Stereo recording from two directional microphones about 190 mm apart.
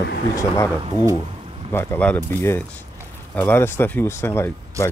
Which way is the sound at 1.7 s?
10° left (ahead or behind).